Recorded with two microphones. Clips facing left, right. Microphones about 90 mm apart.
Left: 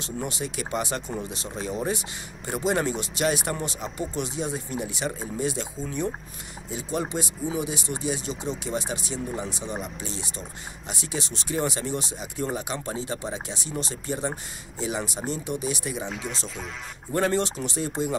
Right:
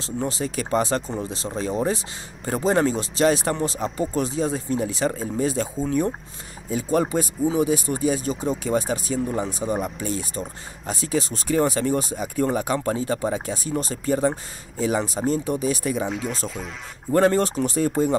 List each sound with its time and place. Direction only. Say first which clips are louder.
0.0 s speech: right 5 dB; 30° right (ahead or behind); by 10.4 s 50° right (ahead or behind)
10.4 s speech: right 6 dB; 40° right (ahead or behind)
16.1 s speech: right 6 dB; centre (ahead or behind)
17.1 s speech: right 6 dB; 45° right (ahead or behind)